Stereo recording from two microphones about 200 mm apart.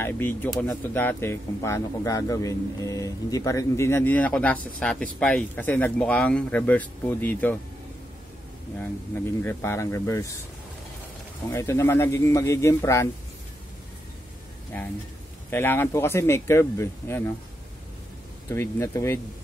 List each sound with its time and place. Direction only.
0.0 s speech: 10° left (ahead or behind)
9.4 s speech: 15° left (ahead or behind)
11.5 s speech: 15° left (ahead or behind)
14.7 s speech: 10° left (ahead or behind)
18.5 s speech: 15° left (ahead or behind)